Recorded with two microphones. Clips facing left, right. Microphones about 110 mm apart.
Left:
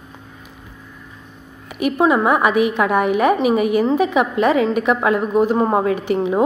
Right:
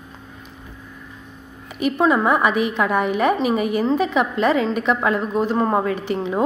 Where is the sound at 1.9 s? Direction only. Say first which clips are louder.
Left 2 dB; 10° left (ahead or behind).